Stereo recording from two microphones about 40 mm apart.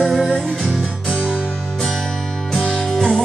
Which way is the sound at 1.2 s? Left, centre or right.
Centre.